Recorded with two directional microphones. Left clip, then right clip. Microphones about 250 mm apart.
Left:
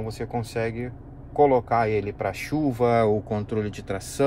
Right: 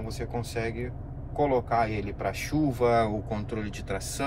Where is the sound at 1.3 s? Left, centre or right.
Left.